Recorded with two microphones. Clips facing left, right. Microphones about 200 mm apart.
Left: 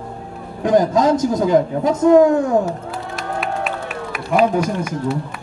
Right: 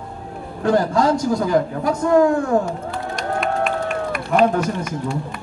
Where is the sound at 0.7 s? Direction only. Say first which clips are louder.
Left 3 dB; 20° left (ahead or behind).